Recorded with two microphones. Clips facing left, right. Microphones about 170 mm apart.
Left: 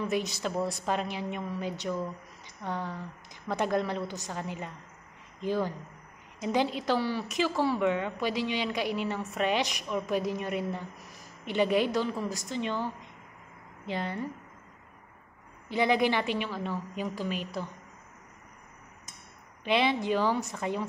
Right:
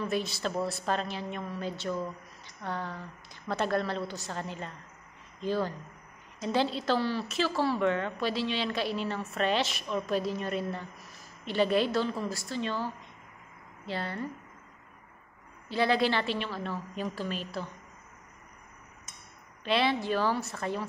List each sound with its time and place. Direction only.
0.0 s a woman's voice: 20° left (ahead or behind)
15.7 s a woman's voice: 15° left (ahead or behind)
19.6 s a woman's voice: 20° left (ahead or behind)